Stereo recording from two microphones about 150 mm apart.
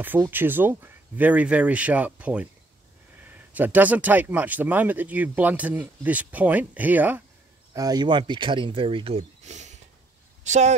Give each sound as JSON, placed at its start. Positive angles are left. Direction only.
{"t": 0.0, "sound": "speech", "side_deg": -15}
{"t": 7.7, "sound": "speech", "side_deg": -25}